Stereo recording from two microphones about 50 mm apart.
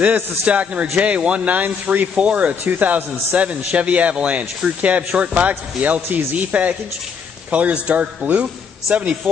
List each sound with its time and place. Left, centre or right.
0.0 s a man's voice: right
2.6 s a man's voice: right